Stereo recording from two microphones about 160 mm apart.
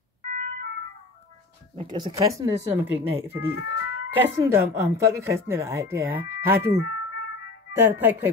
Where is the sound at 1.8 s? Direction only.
30° right (ahead or behind).